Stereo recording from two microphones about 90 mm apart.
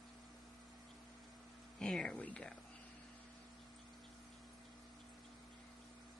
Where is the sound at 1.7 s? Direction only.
10° left (ahead or behind).